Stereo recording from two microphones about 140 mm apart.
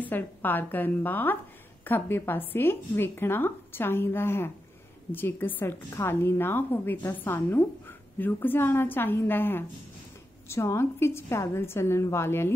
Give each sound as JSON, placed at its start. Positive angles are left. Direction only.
{"t": 0.0, "sound": "a woman's voice", "side_deg": 15}